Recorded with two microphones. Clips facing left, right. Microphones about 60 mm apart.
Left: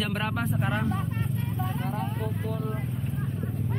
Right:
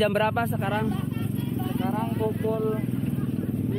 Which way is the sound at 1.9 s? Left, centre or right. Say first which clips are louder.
Right 5 dB; centre.